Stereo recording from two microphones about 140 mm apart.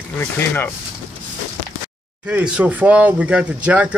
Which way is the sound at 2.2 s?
10° right (ahead or behind).